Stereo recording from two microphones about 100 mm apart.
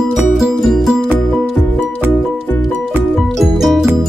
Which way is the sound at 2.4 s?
20° left (ahead or behind).